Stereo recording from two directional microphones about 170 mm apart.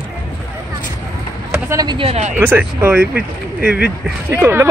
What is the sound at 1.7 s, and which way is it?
Speech, 25° right (ahead or behind).